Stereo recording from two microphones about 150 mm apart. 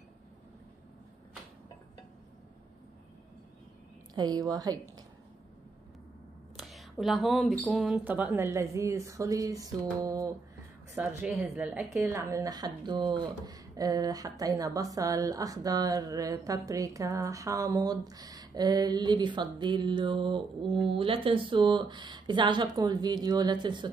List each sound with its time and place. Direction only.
4.1 s a woman's voice: 25° right (ahead or behind)
6.5 s speech: centre (ahead or behind)
8.0 s speech: 10° right (ahead or behind)
11.0 s a woman's voice: 10° right (ahead or behind); by 23.9 s 30° right (ahead or behind)